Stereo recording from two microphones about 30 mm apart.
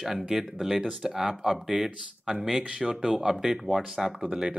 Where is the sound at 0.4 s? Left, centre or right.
Centre.